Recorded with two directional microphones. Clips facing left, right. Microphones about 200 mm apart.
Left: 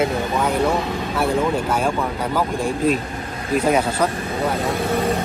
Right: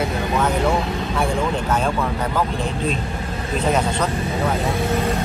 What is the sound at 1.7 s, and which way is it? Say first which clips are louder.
Speech: even; 10° left (ahead or behind).